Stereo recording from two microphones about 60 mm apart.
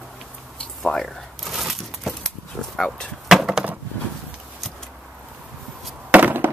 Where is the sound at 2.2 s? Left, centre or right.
Centre.